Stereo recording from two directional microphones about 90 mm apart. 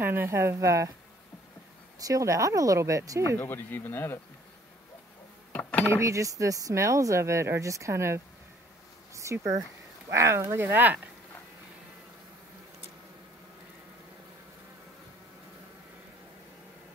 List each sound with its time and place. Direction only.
0.0 s a woman's voice: 25° right (ahead or behind)
2.0 s speech: 40° right (ahead or behind)
3.3 s a man's voice: 25° left (ahead or behind)
5.5 s a sound: 15° left (ahead or behind)
5.9 s speech: 35° right (ahead or behind)